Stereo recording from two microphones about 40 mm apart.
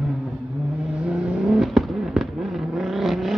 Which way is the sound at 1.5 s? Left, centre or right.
Centre.